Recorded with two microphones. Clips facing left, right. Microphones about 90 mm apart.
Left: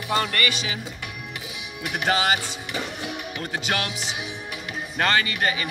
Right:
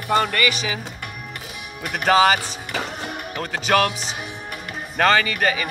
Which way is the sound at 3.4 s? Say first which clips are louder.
Right 8 dB; 90° right.